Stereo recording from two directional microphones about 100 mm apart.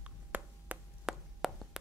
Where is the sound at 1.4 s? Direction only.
Centre (ahead or behind).